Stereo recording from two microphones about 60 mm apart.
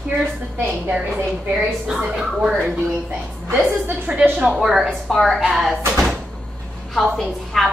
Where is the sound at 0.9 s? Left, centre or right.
Centre.